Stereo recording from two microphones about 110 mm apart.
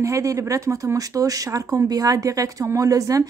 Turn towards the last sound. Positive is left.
turn(degrees=-30)  # may be behind; listen again after turning